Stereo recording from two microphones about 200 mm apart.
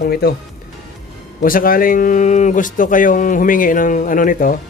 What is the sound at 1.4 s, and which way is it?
Speech, 45° left (ahead or behind).